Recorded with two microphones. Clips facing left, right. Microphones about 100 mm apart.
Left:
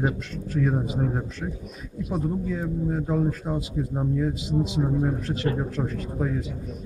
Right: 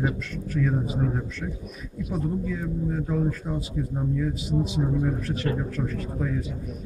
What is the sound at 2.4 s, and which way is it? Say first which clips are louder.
A man's voice: left 1 dB; 30° left (ahead or behind).